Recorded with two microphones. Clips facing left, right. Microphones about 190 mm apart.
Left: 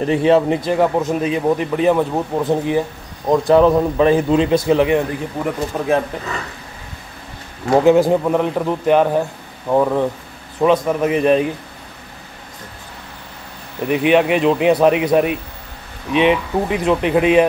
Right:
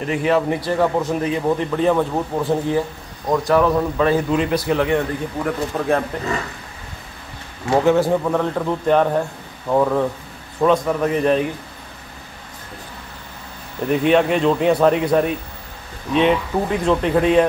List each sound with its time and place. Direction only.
0.0 s a man's voice: 30° left (ahead or behind); by 5.9 s 10° left (ahead or behind)
7.7 s a man's voice: 15° left (ahead or behind)
13.8 s a man's voice: 5° left (ahead or behind)